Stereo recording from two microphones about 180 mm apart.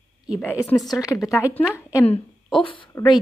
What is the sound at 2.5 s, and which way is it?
Speech, 25° left (ahead or behind).